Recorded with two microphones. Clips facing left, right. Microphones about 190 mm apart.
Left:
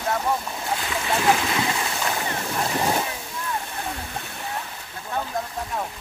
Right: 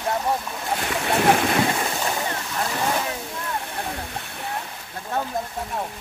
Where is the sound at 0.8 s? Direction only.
60° right (ahead or behind).